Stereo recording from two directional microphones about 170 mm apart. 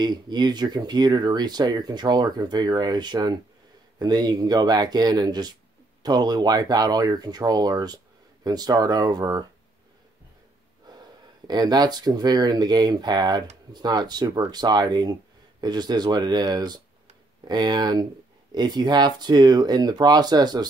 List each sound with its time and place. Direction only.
0.0 s speech: 25° right (ahead or behind)
11.4 s speech: 25° right (ahead or behind)